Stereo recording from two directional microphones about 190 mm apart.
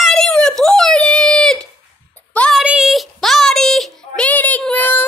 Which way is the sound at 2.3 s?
5° left (ahead or behind).